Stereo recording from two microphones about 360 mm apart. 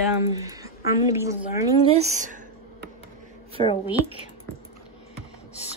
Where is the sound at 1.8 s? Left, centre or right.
Centre.